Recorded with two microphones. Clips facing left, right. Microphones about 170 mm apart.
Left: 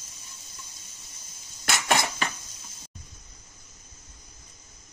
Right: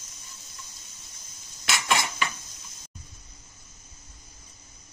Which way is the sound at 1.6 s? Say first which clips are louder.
Left 2 dB; 50° left (ahead or behind).